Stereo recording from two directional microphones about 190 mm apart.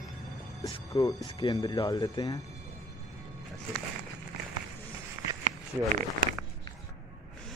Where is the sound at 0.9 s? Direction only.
25° left (ahead or behind).